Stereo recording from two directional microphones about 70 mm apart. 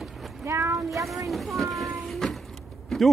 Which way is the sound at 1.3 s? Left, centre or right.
Centre.